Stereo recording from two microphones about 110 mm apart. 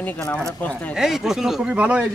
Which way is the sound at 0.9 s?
5° right (ahead or behind).